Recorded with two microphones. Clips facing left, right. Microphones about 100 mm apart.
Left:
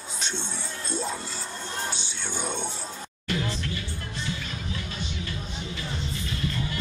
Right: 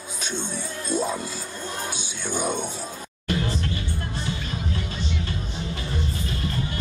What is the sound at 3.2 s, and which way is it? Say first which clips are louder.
Music: right 4 dB; 40° right (ahead or behind).